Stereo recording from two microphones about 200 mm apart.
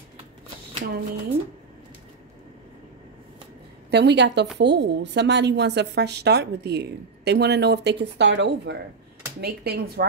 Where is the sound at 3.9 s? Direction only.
55° right (ahead or behind).